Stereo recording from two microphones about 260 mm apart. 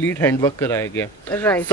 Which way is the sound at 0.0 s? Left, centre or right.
Centre.